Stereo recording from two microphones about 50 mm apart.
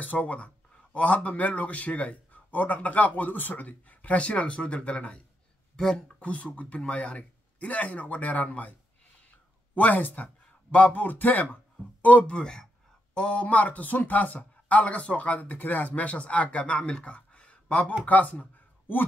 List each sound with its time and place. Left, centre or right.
0.0 s speech: left
5.8 s speech: centre
6.2 s speech: left
9.8 s speech: left